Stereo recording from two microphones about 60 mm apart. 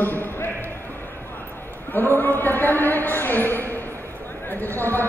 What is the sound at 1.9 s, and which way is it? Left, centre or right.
Speech, left.